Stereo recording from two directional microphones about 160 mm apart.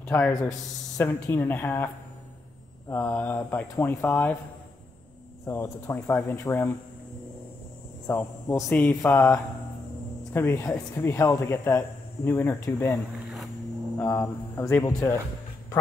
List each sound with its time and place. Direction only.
0.0 s speech: 10° left (ahead or behind)
0.3 s speech: 20° left (ahead or behind)
2.9 s speech: 10° left (ahead or behind)
5.5 s speech: 15° left (ahead or behind)
6.4 s speech: 15° left (ahead or behind)
8.1 s speech: 10° left (ahead or behind)
13.9 s speech: 15° left (ahead or behind)